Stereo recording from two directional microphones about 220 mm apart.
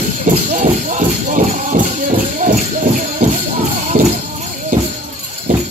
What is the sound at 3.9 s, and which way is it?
Music, 30° right (ahead or behind).